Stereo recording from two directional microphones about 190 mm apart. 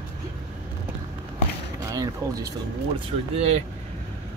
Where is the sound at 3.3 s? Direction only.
35° right (ahead or behind).